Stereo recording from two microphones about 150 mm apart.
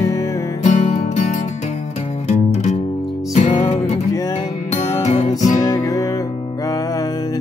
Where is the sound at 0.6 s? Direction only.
50° left (ahead or behind).